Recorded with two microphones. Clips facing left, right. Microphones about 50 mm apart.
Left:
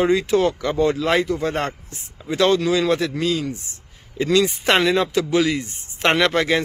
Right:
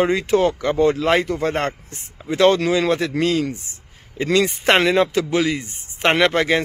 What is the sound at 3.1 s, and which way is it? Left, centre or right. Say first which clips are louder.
Speech: right 3 dB; right.